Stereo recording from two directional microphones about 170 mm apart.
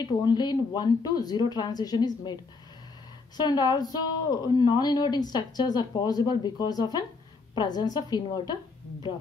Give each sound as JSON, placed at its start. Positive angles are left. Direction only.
{"t": 0.2, "sound": "a woman's voice", "side_deg": 25}
{"t": 3.3, "sound": "a woman's voice", "side_deg": 25}